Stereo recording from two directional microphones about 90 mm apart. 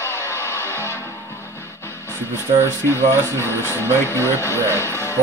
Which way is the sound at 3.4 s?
30° left (ahead or behind).